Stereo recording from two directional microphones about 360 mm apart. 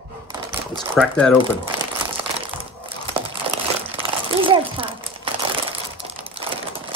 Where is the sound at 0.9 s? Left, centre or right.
Centre.